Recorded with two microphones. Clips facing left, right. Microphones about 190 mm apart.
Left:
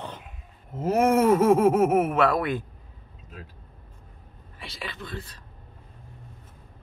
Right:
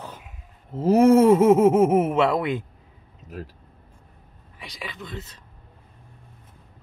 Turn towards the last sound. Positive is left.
turn(degrees=-20)  # may be behind; listen again after turning